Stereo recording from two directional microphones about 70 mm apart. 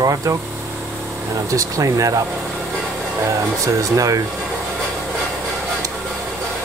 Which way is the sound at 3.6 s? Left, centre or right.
Right.